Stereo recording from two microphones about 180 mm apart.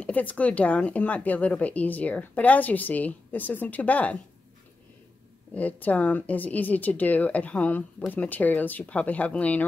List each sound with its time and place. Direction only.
0.0 s speech: 10° left (ahead or behind)
5.5 s speech: 10° left (ahead or behind)